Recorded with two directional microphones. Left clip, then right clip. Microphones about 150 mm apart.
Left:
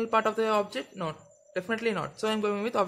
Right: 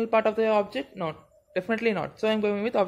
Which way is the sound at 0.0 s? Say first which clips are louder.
Right 3 dB; centre (ahead or behind).